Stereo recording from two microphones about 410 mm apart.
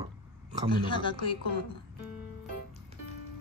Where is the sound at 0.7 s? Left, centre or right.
Centre.